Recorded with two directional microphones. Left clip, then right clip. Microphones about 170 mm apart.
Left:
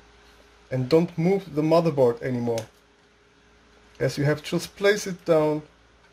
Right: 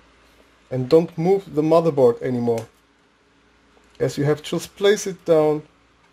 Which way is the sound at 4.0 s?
25° right (ahead or behind).